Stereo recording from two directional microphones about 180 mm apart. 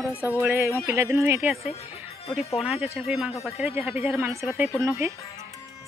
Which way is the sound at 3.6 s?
15° right (ahead or behind).